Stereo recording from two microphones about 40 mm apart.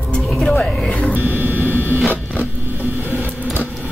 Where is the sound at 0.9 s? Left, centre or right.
Left.